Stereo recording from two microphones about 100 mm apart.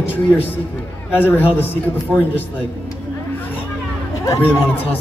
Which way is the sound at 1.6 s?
20° left (ahead or behind).